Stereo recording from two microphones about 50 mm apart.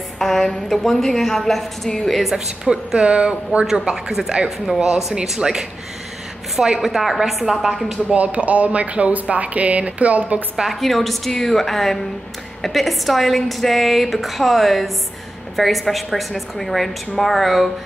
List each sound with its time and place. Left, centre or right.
0.2 s a woman's voice: centre
2.3 s speech: centre
3.9 s speech: centre
6.8 s a woman's voice: centre
8.1 s speech: right
10.5 s speech: centre
10.8 s a woman's voice: centre